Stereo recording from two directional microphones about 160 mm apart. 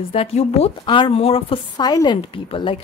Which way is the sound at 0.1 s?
40° left (ahead or behind).